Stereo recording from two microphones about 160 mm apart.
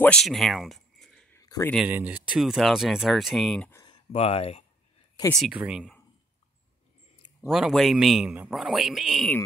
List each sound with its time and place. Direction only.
0.0 s speech: 5° left (ahead or behind)
1.3 s a sound: 20° left (ahead or behind)
1.9 s a man's voice: 10° right (ahead or behind)
3.8 s speech: 35° left (ahead or behind)
5.5 s a man's voice: 5° right (ahead or behind)
7.4 s a man's voice: centre (ahead or behind)